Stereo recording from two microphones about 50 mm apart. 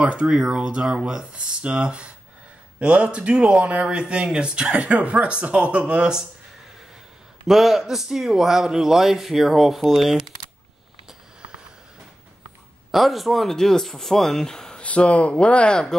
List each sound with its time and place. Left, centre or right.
0.0 s speech: right
7.4 s a man's voice: centre
12.9 s speech: centre
14.8 s speech: left